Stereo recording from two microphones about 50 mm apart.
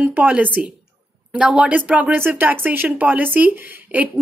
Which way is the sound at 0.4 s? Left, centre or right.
Right.